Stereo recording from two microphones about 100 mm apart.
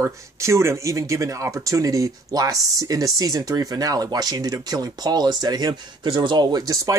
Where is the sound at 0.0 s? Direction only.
30° right (ahead or behind).